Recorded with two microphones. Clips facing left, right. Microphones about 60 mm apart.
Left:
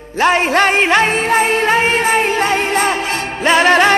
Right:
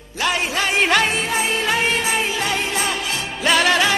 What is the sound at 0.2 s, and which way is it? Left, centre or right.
Music, left.